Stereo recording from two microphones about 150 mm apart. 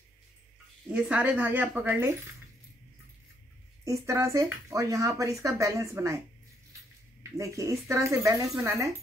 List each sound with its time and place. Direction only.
0.8 s a woman's voice: 5° right (ahead or behind)
3.8 s speech: 20° right (ahead or behind)
7.3 s speech: 20° right (ahead or behind)